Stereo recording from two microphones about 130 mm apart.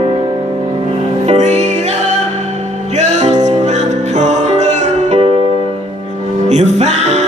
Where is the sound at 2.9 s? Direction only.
60° right (ahead or behind).